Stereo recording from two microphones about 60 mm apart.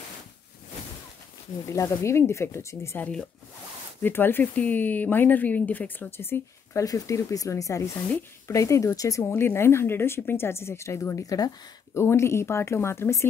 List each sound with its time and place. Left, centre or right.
1.7 s a woman's voice: left
4.0 s speech: left
6.8 s speech: left
9.2 s a woman's voice: left